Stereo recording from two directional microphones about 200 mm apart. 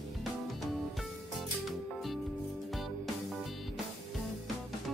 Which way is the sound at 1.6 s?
Centre (ahead or behind).